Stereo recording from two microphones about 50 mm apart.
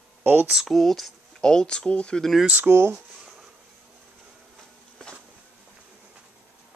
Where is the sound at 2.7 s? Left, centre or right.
Right.